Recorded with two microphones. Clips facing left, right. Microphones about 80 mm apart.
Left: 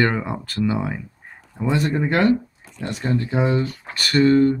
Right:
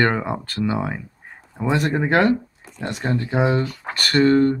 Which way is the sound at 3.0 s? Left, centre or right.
Right.